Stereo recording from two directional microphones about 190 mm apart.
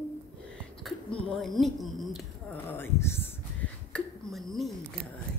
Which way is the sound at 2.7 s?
10° left (ahead or behind).